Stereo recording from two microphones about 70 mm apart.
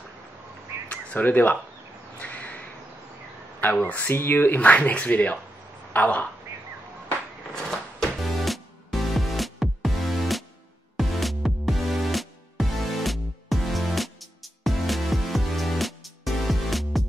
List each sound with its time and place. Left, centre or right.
0.8 s crow: left
3.6 s speech: left
8.3 s music: centre